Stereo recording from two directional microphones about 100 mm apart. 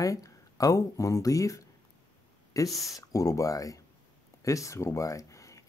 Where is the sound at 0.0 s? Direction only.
35° left (ahead or behind).